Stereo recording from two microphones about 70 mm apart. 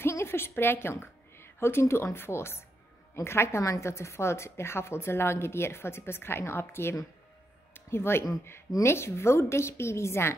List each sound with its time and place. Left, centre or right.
0.0 s a woman's voice: left